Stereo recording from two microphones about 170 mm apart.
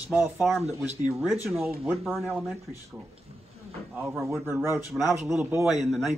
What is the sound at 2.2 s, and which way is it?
Speech, 15° right (ahead or behind).